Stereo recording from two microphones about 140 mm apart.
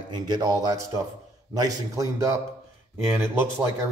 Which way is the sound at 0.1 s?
30° right (ahead or behind).